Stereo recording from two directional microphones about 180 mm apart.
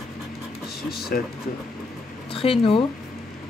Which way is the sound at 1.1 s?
55° left (ahead or behind).